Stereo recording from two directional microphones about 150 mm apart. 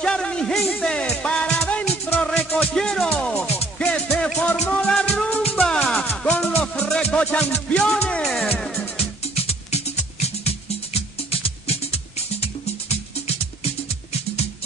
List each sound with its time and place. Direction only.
0.0 s music: 5° left (ahead or behind)
8.9 s music: 40° left (ahead or behind)
11.4 s music: 40° left (ahead or behind)